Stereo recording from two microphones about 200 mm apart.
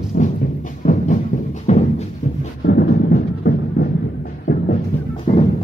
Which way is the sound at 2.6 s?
50° left (ahead or behind).